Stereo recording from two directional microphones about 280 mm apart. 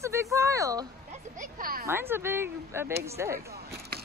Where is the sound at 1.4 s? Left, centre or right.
Right.